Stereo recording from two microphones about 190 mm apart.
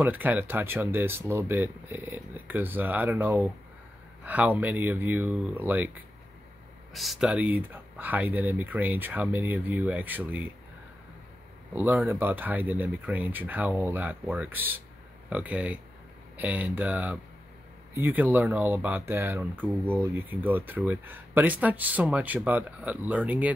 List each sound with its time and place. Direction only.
0.0 s speech: 10° right (ahead or behind)
11.7 s speech: 10° right (ahead or behind)